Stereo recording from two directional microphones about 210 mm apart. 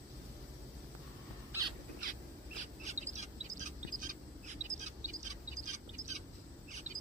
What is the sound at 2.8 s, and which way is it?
Bird, 35° right (ahead or behind).